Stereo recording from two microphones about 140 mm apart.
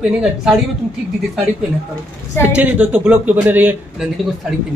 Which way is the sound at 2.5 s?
10° right (ahead or behind).